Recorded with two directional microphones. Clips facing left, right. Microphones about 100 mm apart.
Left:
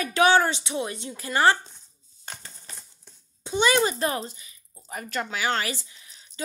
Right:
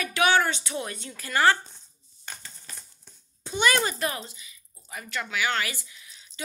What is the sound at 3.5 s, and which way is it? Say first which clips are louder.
Speech: left 3 dB; 20° left (ahead or behind).